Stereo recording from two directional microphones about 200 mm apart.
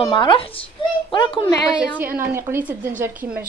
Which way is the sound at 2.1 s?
10° right (ahead or behind).